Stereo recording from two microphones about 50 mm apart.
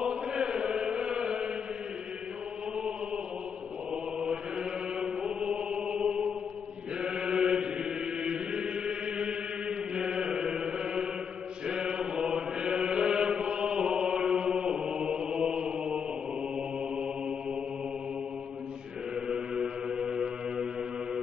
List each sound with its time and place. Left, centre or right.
0.0 s chant: centre
3.9 s chant: centre
16.5 s mantra: centre
19.2 s a sound: centre